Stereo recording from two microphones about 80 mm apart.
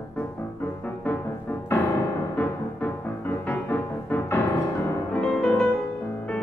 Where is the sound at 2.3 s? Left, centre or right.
Left.